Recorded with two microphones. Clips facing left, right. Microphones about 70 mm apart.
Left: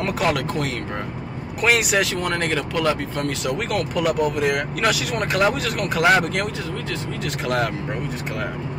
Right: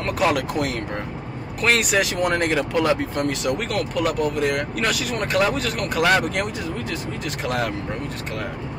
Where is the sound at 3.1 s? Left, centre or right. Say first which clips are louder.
Right 1 dB; centre.